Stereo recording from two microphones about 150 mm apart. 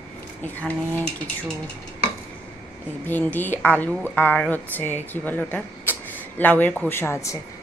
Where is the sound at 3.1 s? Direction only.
10° left (ahead or behind).